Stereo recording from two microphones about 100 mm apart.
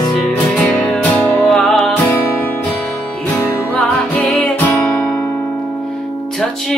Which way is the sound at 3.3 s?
15° left (ahead or behind).